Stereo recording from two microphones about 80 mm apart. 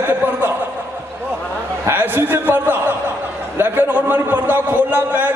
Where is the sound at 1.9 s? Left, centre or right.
Right.